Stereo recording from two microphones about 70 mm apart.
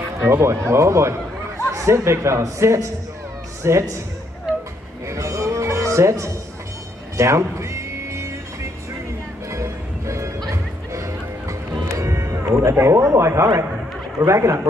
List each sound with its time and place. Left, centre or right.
0.3 s a man's voice: right
5.0 s music: right
9.5 s music: right
14.2 s speech: right